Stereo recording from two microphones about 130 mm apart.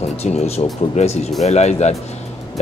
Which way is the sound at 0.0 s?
55° left (ahead or behind).